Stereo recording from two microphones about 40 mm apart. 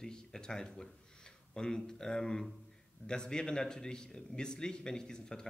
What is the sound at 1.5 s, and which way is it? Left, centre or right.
Speech, centre.